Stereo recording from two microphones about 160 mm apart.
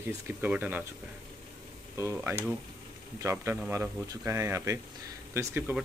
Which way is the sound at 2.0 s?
15° right (ahead or behind).